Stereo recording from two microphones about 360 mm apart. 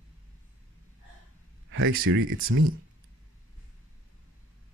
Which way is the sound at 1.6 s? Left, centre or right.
Right.